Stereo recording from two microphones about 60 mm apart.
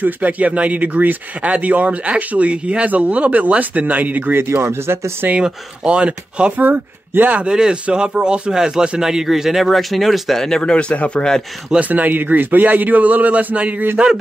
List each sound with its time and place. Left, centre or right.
0.0 s speech: right
5.3 s speech: centre
6.6 s a man's voice: right; by 11.3 s centre
11.8 s speech: right